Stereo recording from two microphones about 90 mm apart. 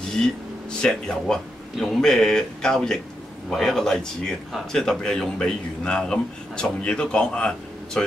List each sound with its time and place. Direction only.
0.1 s a man's voice: 10° left (ahead or behind)